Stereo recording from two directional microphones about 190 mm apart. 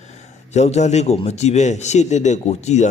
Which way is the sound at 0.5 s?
35° left (ahead or behind).